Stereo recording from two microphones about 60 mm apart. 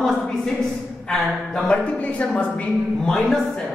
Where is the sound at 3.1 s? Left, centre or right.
Centre.